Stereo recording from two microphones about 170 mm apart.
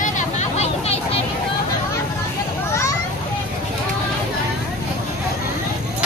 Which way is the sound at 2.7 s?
15° left (ahead or behind).